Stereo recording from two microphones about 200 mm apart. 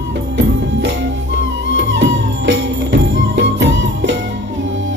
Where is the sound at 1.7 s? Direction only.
65° right (ahead or behind).